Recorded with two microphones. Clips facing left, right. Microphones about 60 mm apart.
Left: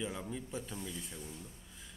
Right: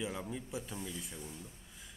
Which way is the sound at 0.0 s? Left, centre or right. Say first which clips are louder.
Even; centre.